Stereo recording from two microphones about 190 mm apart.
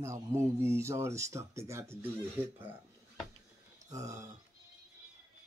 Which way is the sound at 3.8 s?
15° right (ahead or behind).